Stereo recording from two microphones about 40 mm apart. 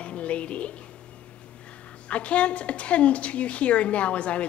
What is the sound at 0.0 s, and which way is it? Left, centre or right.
Music, left.